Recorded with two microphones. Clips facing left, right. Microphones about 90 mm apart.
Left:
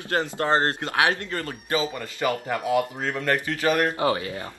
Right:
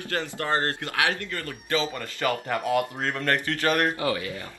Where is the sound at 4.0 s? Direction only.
30° left (ahead or behind).